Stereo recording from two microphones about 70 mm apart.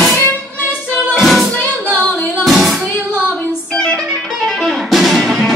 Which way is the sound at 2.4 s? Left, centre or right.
Centre.